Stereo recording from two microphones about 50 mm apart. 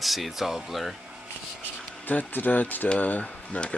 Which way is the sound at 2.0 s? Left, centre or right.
Left.